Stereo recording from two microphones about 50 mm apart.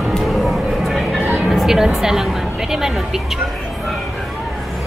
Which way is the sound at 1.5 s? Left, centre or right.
Centre.